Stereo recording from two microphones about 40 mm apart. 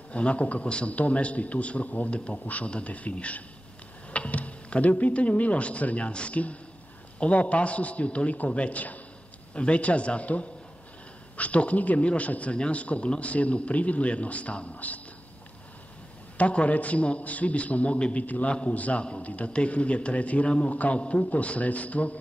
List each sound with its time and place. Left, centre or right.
0.1 s a man's voice: left
16.3 s a man's voice: left
18.2 s a man's voice: left
20.4 s a man's voice: left
20.7 s a man's voice: left